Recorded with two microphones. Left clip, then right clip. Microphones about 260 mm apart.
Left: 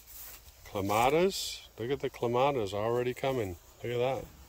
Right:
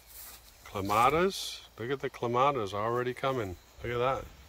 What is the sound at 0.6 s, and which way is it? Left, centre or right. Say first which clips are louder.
Speech: right 2 dB; centre.